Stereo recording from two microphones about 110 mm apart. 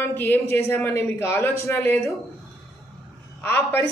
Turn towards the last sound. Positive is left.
turn(degrees=20)  # may be behind; listen again after turning